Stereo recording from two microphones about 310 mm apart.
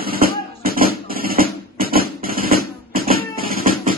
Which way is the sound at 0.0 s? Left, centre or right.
Right.